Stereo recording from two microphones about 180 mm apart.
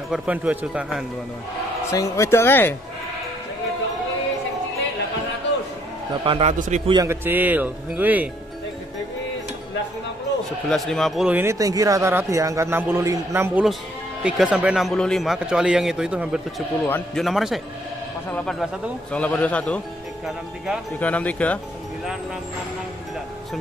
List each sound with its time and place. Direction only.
0.1 s a man's voice: 5° right (ahead or behind)
1.9 s speech: 15° left (ahead or behind)
6.2 s a man's voice: 35° right (ahead or behind)
6.9 s speech: 15° right (ahead or behind)
10.7 s a man's voice: centre (ahead or behind)
16.8 s a man's voice: 5° left (ahead or behind)
21.0 s speech: 10° left (ahead or behind)